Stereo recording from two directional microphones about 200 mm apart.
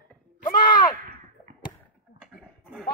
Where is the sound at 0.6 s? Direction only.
20° left (ahead or behind).